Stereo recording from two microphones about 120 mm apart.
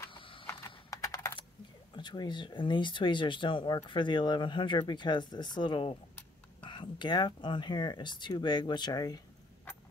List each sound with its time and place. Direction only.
0.1 s a sound: 45° left (ahead or behind)
0.5 s typing: 25° left (ahead or behind)
2.0 s speech: 40° left (ahead or behind)